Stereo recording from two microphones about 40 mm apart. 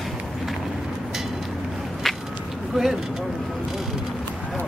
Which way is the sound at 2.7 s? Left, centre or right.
Centre.